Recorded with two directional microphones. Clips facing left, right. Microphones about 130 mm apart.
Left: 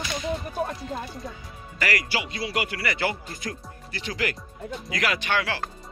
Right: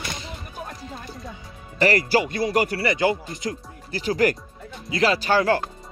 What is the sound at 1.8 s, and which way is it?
Speech, 35° right (ahead or behind).